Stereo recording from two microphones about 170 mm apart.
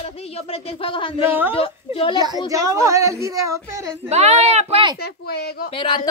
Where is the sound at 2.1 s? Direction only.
25° right (ahead or behind).